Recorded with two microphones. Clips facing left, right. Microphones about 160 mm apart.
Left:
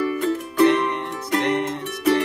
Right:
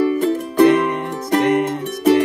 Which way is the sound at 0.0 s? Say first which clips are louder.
Right 5 dB; 40° right (ahead or behind).